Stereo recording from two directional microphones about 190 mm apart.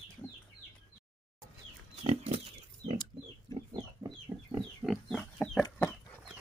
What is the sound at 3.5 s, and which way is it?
Chicken, 25° right (ahead or behind).